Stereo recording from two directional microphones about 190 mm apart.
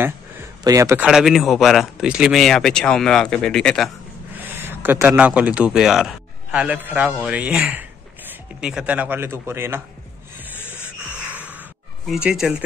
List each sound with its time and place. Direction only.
0.7 s speech: 15° right (ahead or behind)
1.0 s speech: centre (ahead or behind)
4.3 s speech: 10° right (ahead or behind)
10.6 s music: 10° left (ahead or behind)
12.1 s speech: 5° right (ahead or behind)